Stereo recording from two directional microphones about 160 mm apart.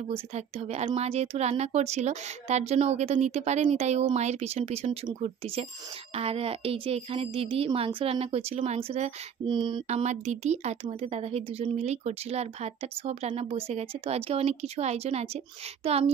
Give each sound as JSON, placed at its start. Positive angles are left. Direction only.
{"t": 0.1, "sound": "speech", "side_deg": -40}
{"t": 6.1, "sound": "speech", "side_deg": -40}
{"t": 9.5, "sound": "a sound", "side_deg": -30}
{"t": 9.8, "sound": "speech", "side_deg": -45}